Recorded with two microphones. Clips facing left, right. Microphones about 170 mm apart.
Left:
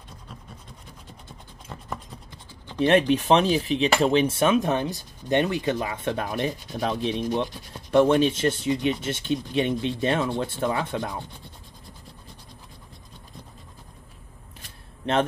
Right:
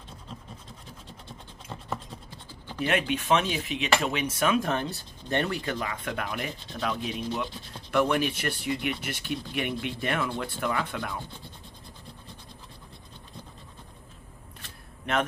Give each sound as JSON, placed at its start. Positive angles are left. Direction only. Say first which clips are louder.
{"t": 2.8, "sound": "speech", "louder": "left 8 dB", "side_deg": 35}
{"t": 6.2, "sound": "rub", "louder": "left 6 dB", "side_deg": 35}
{"t": 7.9, "sound": "speech", "louder": "left 7 dB", "side_deg": 25}